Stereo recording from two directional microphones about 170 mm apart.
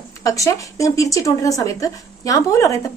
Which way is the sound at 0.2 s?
20° left (ahead or behind).